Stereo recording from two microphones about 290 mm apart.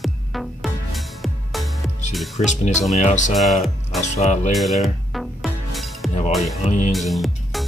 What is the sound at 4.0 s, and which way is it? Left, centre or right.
Speech, left.